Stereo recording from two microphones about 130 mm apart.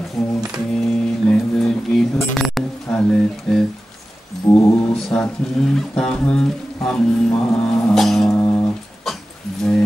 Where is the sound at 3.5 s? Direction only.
5° left (ahead or behind).